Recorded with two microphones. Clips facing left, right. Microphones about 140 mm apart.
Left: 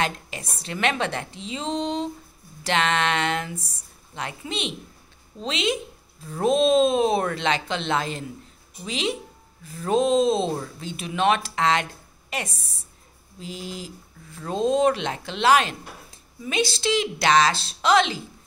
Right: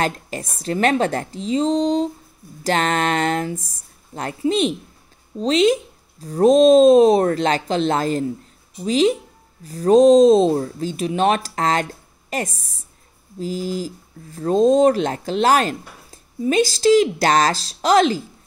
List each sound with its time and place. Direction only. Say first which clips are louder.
0.0 s speech: right 4 dB; 45° right (ahead or behind)